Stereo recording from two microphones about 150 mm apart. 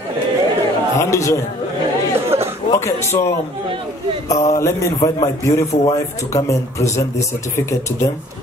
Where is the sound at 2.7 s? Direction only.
20° left (ahead or behind).